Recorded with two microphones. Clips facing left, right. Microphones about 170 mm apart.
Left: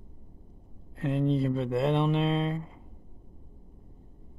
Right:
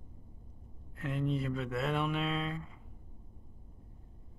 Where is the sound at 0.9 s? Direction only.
30° left (ahead or behind).